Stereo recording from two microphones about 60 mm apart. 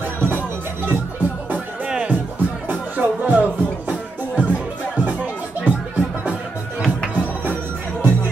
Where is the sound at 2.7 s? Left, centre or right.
Right.